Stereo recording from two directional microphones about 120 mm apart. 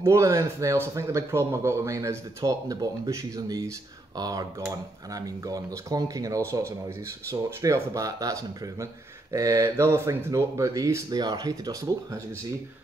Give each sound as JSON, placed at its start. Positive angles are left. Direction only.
{"t": 0.0, "sound": "a man's voice", "side_deg": -25}